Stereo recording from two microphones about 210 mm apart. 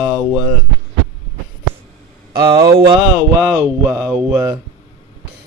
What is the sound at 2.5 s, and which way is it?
Speech, 20° right (ahead or behind).